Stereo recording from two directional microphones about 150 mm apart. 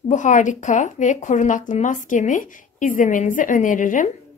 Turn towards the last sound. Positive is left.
turn(degrees=60)  # may be behind; listen again after turning